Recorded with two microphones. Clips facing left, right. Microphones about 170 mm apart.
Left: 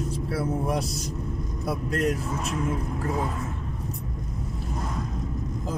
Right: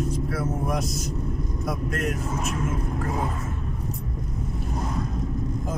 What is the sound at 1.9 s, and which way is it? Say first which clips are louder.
Speech: left 5 dB; 35° left (ahead or behind).